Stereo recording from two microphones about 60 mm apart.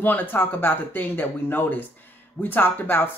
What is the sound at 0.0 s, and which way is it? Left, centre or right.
Speech, left.